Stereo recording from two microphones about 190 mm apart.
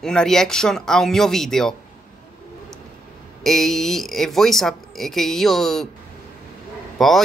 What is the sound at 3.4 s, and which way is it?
Speech, centre (ahead or behind).